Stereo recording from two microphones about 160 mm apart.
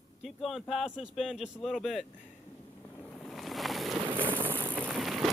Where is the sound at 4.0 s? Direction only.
30° right (ahead or behind).